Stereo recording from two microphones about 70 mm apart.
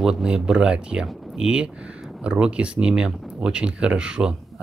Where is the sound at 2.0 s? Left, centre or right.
Centre.